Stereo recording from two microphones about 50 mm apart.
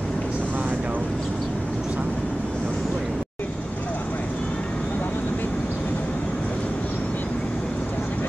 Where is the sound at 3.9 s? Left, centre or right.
Left.